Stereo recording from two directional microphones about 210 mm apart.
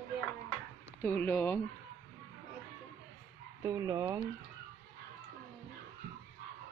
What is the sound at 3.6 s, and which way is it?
Speech, 15° right (ahead or behind).